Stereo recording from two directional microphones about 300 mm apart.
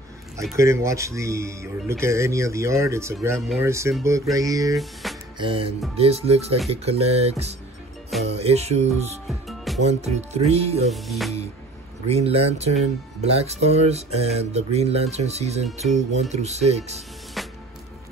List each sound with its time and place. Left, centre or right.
0.6 s speech: centre
5.0 s music: centre
5.4 s speech: centre
9.3 s music: centre
9.8 s speech: right
10.9 s speech: centre
12.1 s speech: right
17.4 s music: centre